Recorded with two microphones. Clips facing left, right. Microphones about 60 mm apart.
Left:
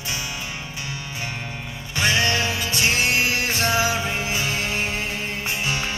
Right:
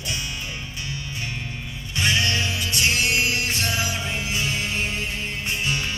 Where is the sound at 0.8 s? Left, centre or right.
Left.